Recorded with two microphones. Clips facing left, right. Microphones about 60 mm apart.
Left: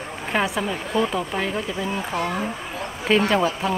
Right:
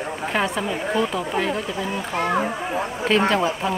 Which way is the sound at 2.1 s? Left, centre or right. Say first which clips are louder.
Right 3 dB; right.